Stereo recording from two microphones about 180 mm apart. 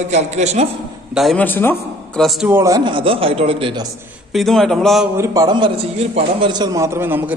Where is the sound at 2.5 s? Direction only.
15° right (ahead or behind).